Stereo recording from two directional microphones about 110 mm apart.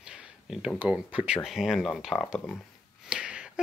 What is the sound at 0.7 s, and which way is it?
Speech, 10° right (ahead or behind).